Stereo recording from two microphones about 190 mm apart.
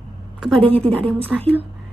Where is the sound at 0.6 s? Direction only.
30° right (ahead or behind).